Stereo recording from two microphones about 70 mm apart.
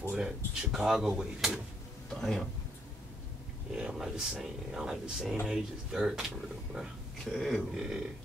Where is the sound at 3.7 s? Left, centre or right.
Centre.